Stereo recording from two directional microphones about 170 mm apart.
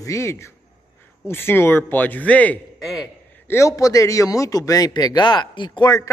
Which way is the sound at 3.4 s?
15° left (ahead or behind).